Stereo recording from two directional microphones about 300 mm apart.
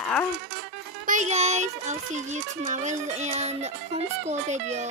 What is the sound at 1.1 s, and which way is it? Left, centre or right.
A child's voice, right.